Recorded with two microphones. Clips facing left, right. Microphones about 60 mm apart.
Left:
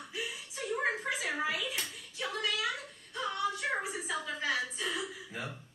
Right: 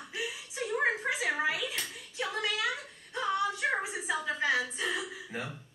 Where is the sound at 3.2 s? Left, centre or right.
Right.